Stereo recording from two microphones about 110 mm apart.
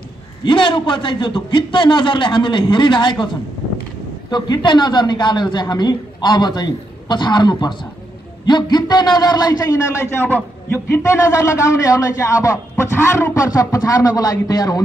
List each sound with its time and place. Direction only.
0.5 s a man's voice: 50° left (ahead or behind)
10.1 s a man's voice: 20° left (ahead or behind); by 14.8 s 35° left (ahead or behind)